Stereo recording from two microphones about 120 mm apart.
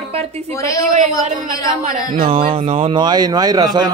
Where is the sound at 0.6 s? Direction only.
25° left (ahead or behind).